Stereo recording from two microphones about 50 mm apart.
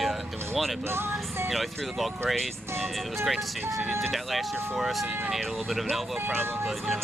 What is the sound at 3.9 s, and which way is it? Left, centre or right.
Speech, centre.